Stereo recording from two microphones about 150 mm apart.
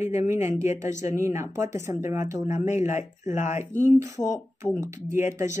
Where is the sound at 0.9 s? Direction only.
55° left (ahead or behind).